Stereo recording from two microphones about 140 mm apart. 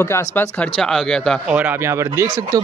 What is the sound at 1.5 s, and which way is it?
Speech, 10° right (ahead or behind).